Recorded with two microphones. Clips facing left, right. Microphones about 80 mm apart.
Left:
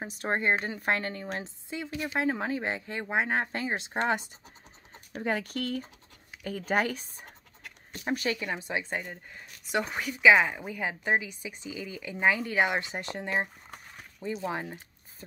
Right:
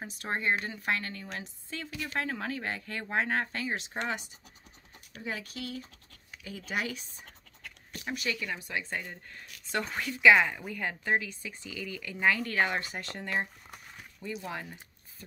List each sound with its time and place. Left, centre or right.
0.0 s speech: left
1.4 s speech: centre; by 4.2 s left
5.1 s speech: left